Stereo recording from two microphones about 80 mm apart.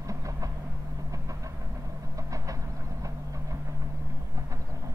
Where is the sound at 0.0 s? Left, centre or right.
Right.